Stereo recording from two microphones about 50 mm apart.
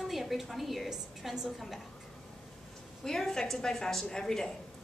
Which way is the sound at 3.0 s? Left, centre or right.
Centre.